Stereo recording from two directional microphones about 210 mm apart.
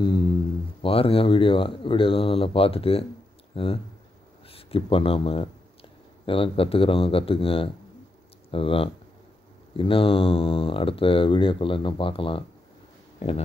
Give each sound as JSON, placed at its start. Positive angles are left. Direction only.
{"t": 0.8, "sound": "speech", "side_deg": 25}